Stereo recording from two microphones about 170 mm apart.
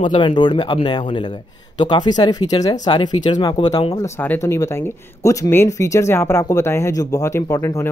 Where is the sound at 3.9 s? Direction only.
15° left (ahead or behind).